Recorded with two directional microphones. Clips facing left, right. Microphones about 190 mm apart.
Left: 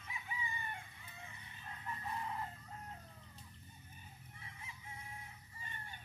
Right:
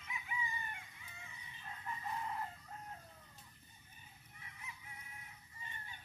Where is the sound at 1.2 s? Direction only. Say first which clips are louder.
Left 3 dB; 55° left (ahead or behind).